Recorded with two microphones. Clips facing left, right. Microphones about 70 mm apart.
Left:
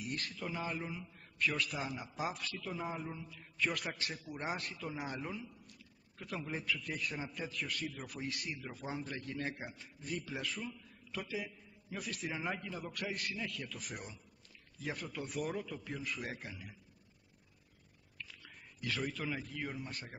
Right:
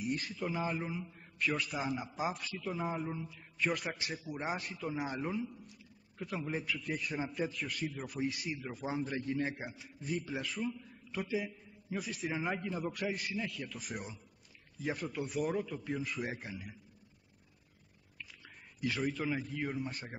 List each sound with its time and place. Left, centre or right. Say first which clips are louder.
0.0 s a man's voice: right 5 dB; centre
18.1 s a sound: even; centre
18.9 s a man's voice: right 4 dB; centre